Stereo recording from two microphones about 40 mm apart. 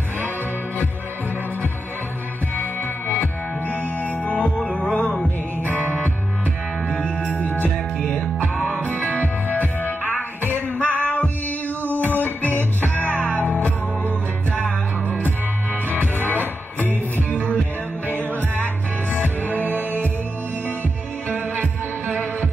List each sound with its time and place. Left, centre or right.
3.6 s music: left
6.9 s music: left
7.3 s music: left
9.0 s music: right
10.8 s music: left
15.9 s music: right
18.0 s music: right